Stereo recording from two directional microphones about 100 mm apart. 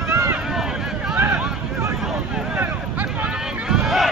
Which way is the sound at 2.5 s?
15° right (ahead or behind).